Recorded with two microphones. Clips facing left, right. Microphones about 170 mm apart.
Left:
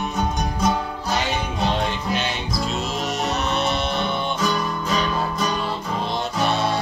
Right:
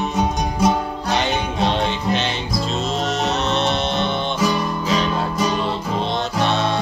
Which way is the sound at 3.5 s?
10° left (ahead or behind).